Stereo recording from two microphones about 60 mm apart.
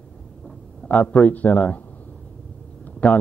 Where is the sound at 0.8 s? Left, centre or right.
Left.